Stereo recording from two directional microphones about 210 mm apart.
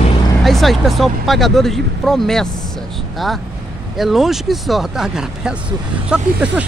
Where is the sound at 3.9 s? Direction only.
Centre (ahead or behind).